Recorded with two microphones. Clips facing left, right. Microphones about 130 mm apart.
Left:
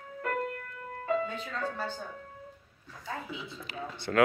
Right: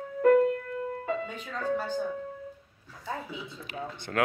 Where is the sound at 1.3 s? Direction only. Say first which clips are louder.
Right 4 dB; 10° right (ahead or behind).